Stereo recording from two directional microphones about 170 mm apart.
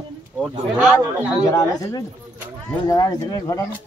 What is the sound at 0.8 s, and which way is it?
Speech, 10° right (ahead or behind).